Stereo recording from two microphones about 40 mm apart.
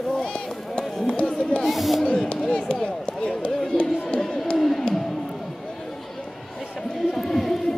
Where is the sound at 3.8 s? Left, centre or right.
Left.